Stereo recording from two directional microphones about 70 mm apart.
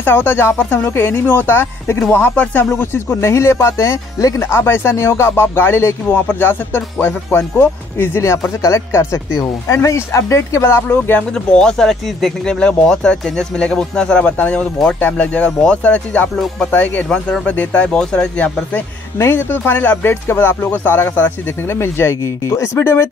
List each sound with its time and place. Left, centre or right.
0.0 s speech: left
8.6 s speech: left
10.9 s speech: left
11.3 s speech: centre
19.1 s speech: left
19.5 s speech: left